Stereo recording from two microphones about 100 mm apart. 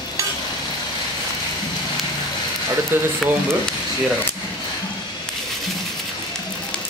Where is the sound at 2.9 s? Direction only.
20° right (ahead or behind).